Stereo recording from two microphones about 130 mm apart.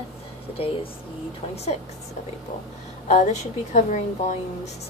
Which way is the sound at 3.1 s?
60° left (ahead or behind).